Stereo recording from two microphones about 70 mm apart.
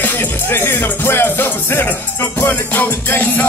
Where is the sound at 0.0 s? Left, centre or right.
Left.